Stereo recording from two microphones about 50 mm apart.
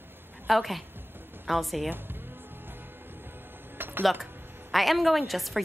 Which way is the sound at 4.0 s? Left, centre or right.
Centre.